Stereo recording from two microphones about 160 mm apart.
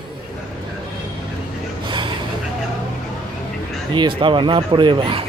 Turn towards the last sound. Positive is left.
turn(degrees=-30)  # may be behind; listen again after turning